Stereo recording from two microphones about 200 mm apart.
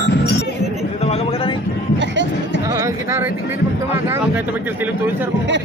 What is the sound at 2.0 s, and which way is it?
Music, 65° right (ahead or behind).